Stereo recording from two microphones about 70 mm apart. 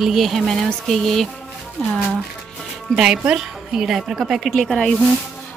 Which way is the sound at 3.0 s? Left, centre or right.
Centre.